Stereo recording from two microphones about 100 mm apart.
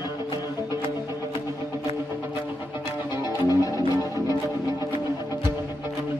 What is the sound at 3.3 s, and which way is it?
Music, 40° left (ahead or behind).